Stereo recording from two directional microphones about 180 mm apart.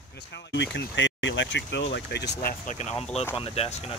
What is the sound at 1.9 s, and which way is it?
Speech, 70° left (ahead or behind).